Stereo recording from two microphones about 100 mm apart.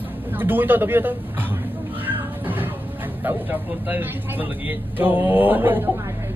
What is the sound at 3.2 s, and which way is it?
Speech, 20° right (ahead or behind).